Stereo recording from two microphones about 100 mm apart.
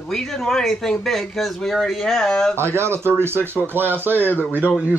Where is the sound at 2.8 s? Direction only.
25° right (ahead or behind).